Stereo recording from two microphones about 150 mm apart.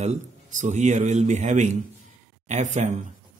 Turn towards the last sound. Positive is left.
turn(degrees=-50)  # may be behind; listen again after turning